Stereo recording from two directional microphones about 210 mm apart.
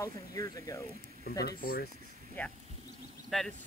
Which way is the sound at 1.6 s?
45° left (ahead or behind).